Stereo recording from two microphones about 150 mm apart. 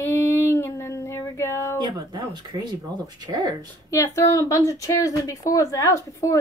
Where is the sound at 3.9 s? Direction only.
20° left (ahead or behind).